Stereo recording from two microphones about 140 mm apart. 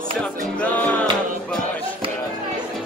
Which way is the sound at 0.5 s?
10° left (ahead or behind).